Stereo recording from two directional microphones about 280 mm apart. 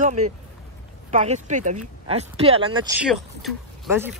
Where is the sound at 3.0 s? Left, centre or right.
Centre.